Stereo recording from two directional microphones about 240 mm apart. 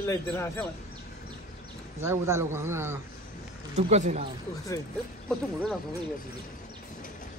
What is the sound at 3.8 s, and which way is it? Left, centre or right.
Speech, right.